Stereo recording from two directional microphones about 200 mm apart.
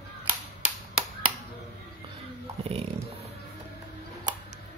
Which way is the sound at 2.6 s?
30° right (ahead or behind).